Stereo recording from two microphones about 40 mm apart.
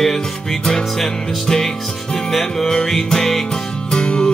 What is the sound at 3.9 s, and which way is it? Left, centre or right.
Music, left.